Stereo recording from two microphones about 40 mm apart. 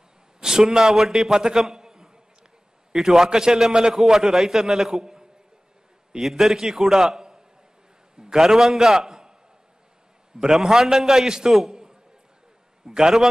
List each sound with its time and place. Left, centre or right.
0.4 s a man's voice: centre
10.4 s a man's voice: centre
11.5 s a sound: centre
12.8 s a man's voice: centre